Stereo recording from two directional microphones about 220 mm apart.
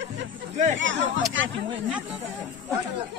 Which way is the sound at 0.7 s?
60° right (ahead or behind).